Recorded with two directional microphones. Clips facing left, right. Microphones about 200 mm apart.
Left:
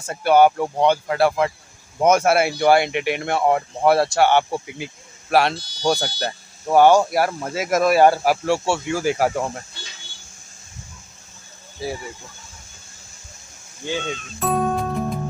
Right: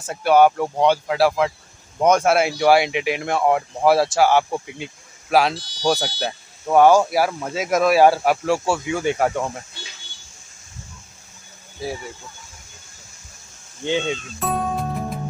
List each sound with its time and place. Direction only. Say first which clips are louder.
0.0 s speech: even; centre (ahead or behind)
11.8 s speech: even; centre (ahead or behind)
13.8 s speech: right 4 dB; 20° right (ahead or behind)
14.4 s music: left 4 dB; centre (ahead or behind)